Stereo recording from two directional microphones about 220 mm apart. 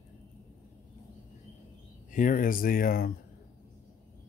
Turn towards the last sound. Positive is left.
turn(degrees=40)  # may be behind; listen again after turning